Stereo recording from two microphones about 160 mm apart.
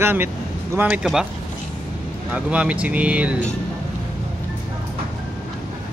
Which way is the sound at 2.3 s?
10° right (ahead or behind).